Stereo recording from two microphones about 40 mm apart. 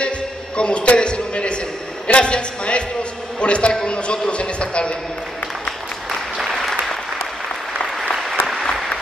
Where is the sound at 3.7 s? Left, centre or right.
Left.